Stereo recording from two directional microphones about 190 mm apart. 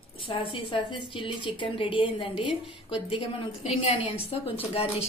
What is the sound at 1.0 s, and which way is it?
A woman's voice, 25° left (ahead or behind).